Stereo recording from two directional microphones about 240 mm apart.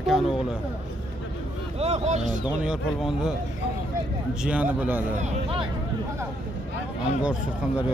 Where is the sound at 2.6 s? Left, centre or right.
Centre.